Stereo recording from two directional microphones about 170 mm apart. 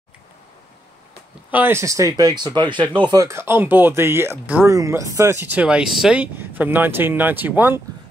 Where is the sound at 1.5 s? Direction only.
10° right (ahead or behind).